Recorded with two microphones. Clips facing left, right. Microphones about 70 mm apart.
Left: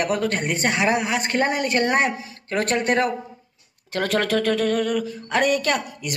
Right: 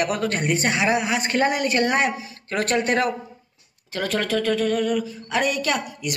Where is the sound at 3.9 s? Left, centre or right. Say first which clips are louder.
Left 2 dB; left.